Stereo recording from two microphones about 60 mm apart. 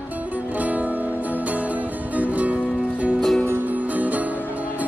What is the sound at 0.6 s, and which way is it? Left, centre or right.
Music, right.